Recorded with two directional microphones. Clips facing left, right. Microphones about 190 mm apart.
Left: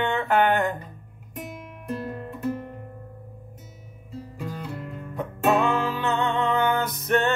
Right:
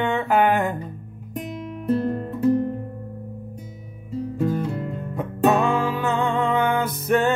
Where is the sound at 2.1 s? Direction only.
35° right (ahead or behind).